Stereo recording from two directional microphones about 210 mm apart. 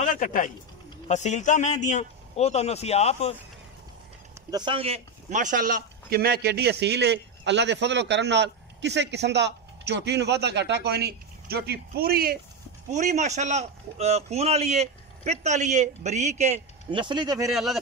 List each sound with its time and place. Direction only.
0.0 s a man's voice: 40° left (ahead or behind)
4.5 s speech: 20° right (ahead or behind); by 12.4 s 45° right (ahead or behind)
12.9 s a man's voice: 35° right (ahead or behind)
17.5 s speech: centre (ahead or behind)